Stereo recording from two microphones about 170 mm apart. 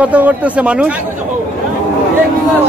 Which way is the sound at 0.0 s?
10° right (ahead or behind).